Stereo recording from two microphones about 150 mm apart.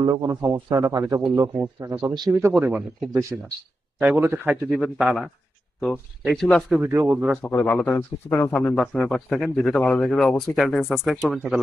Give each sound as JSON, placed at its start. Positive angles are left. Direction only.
{"t": 0.0, "sound": "speech", "side_deg": -25}
{"t": 2.3, "sound": "speech", "side_deg": -10}
{"t": 4.6, "sound": "speech", "side_deg": 0}
{"t": 6.8, "sound": "speech", "side_deg": -15}
{"t": 7.4, "sound": "speech", "side_deg": 10}